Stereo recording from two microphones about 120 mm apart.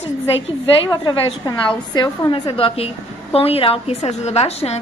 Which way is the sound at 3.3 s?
55° left (ahead or behind).